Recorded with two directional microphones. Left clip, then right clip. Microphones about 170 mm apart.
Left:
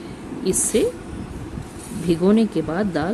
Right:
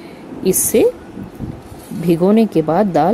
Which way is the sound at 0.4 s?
25° right (ahead or behind).